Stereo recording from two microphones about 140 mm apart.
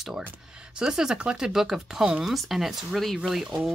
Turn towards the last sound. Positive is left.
turn(degrees=-5)  # may be behind; listen again after turning